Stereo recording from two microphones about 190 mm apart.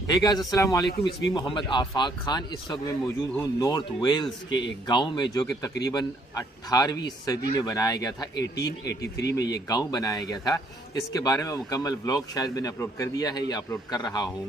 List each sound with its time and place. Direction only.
0.0 s a man's voice: 20° left (ahead or behind)